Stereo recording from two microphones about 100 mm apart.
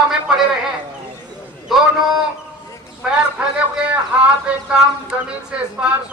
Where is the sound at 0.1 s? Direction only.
5° right (ahead or behind).